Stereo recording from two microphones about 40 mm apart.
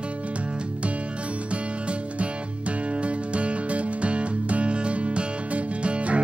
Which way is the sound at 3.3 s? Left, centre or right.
Right.